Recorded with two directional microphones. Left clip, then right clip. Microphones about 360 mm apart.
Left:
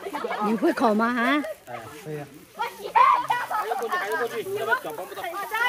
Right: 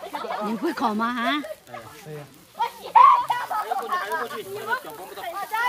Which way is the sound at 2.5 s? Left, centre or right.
Right.